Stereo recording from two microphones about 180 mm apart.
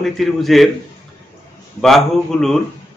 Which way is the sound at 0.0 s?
Centre (ahead or behind).